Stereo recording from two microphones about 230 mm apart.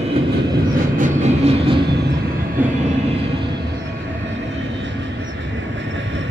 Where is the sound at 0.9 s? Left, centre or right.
Right.